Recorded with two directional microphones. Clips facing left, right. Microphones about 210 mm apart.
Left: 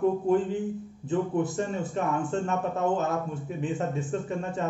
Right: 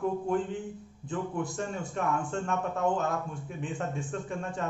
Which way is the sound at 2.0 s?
Centre (ahead or behind).